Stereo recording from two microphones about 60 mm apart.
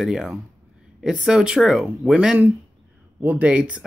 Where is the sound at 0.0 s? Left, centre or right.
Centre.